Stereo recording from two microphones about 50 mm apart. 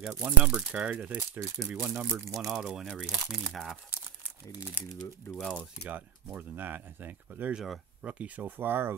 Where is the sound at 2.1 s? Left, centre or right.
Right.